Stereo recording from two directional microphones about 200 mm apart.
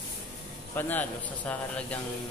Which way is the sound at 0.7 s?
10° left (ahead or behind).